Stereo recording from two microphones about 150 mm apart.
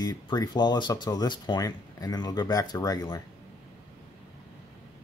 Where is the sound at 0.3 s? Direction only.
25° left (ahead or behind).